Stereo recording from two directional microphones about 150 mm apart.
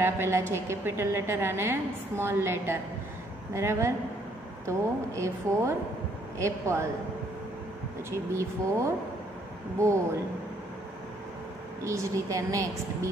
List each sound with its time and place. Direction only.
0.0 s a woman's voice: 15° right (ahead or behind)
8.1 s speech: 20° right (ahead or behind)
11.8 s speech: 20° right (ahead or behind)